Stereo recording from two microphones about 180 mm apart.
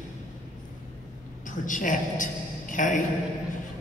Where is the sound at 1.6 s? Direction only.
45° left (ahead or behind).